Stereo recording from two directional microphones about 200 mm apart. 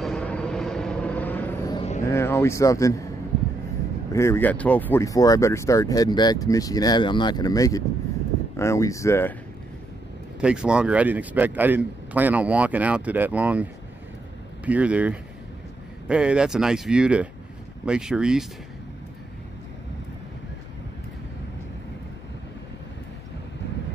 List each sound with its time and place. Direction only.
0.0 s vehicle: 5° left (ahead or behind)
1.8 s a sound: 30° left (ahead or behind)
2.0 s speech: 15° left (ahead or behind)
4.1 s speech: 15° left (ahead or behind)
10.4 s a man's voice: 5° right (ahead or behind)